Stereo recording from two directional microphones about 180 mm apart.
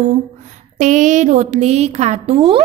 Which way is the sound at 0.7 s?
45° right (ahead or behind).